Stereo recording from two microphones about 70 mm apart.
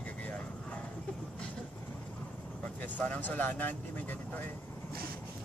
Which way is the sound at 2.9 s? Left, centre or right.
Left.